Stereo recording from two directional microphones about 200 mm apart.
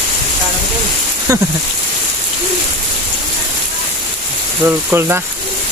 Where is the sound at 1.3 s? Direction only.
15° right (ahead or behind).